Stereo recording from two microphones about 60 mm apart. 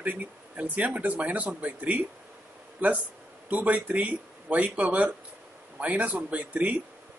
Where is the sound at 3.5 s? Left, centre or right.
Right.